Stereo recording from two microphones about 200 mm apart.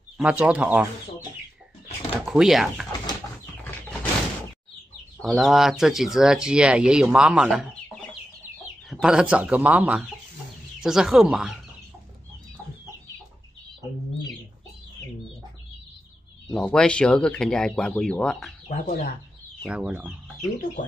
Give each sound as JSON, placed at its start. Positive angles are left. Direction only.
{"t": 0.2, "sound": "speech", "side_deg": -5}
{"t": 2.2, "sound": "speech", "side_deg": 0}
{"t": 5.2, "sound": "speech", "side_deg": 0}
{"t": 8.9, "sound": "speech", "side_deg": -5}
{"t": 16.5, "sound": "speech", "side_deg": 5}
{"t": 18.7, "sound": "speech", "side_deg": 45}
{"t": 19.6, "sound": "speech", "side_deg": -5}